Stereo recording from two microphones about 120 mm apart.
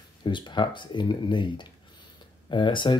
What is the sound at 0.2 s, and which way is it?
Speech, 40° left (ahead or behind).